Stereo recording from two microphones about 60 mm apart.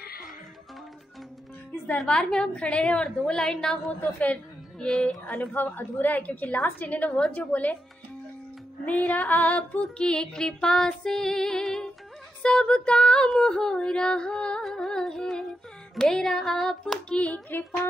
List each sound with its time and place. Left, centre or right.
2.0 s music: centre
4.7 s a woman's voice: centre
5.3 s a woman's voice: left
8.8 s a woman's voice: left
9.8 s music: centre
14.6 s music: centre
17.1 s a woman's voice: centre